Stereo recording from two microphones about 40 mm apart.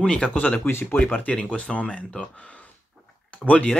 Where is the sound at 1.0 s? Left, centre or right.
Left.